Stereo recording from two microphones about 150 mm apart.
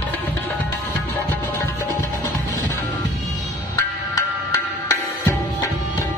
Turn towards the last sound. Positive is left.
turn(degrees=20)  # may be behind; listen again after turning